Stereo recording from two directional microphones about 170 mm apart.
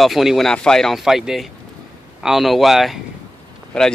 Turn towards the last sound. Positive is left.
turn(degrees=5)  # may be behind; listen again after turning